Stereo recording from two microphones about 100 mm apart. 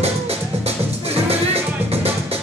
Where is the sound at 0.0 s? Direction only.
90° right.